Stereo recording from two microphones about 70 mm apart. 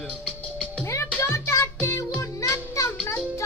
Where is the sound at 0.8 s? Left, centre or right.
Left.